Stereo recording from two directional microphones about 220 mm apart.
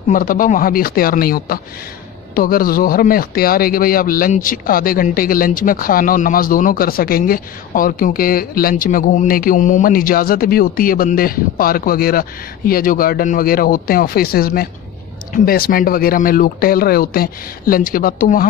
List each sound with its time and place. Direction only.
0.1 s speech: 40° left (ahead or behind)